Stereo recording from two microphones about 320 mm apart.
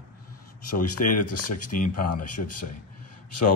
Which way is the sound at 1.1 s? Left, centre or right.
Left.